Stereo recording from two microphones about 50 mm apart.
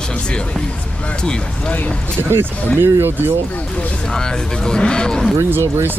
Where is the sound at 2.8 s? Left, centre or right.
Right.